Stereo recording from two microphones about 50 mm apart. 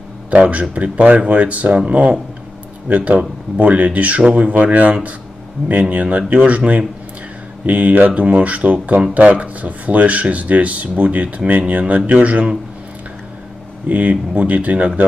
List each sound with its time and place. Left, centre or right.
0.3 s speech: right
13.8 s speech: right